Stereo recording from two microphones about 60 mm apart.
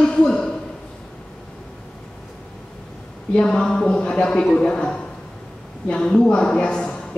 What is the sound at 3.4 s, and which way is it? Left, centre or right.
A woman's voice, centre.